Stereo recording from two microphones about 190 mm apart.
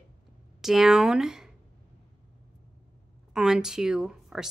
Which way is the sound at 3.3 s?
5° right (ahead or behind).